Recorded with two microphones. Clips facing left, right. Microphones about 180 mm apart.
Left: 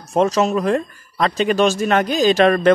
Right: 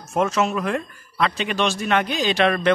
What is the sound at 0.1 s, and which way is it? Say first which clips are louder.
Speech: left 5 dB; 35° left (ahead or behind).